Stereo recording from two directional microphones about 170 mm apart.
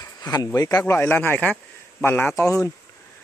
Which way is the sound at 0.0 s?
20° left (ahead or behind).